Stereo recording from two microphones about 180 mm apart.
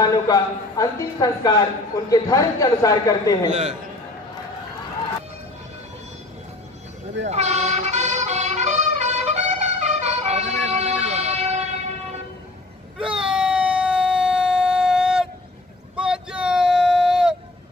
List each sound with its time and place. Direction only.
0.0 s speech: 20° left (ahead or behind)
7.2 s music: 40° right (ahead or behind)
13.0 s baby cry: 5° right (ahead or behind)
16.0 s a sound: 5° right (ahead or behind)